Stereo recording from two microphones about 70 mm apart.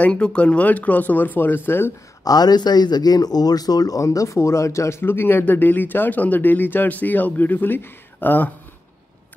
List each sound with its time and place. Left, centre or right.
0.0 s speech: centre; by 1.9 s left
2.2 s speech: left